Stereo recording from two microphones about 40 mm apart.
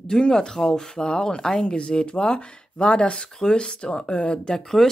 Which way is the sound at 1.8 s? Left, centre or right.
Left.